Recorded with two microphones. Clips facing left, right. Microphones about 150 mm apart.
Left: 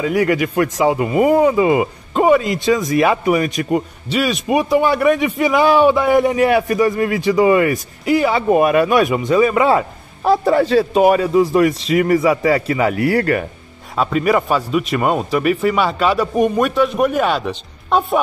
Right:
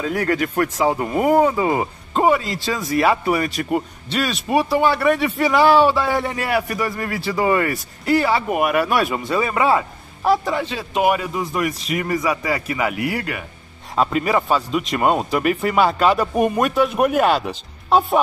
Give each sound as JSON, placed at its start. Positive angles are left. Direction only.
{"t": 0.0, "sound": "speech", "side_deg": 10}
{"t": 8.4, "sound": "a man's voice", "side_deg": 25}
{"t": 10.5, "sound": "a man's voice", "side_deg": 40}
{"t": 13.2, "sound": "speech", "side_deg": 50}
{"t": 14.5, "sound": "speech", "side_deg": 5}